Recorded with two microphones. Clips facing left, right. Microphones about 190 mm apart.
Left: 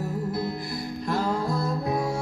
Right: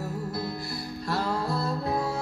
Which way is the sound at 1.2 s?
15° left (ahead or behind).